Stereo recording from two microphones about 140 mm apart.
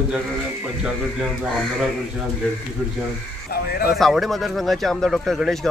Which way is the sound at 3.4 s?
90° left.